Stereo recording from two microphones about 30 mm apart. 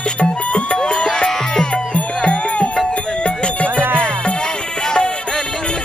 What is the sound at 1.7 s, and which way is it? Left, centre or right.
Music, left.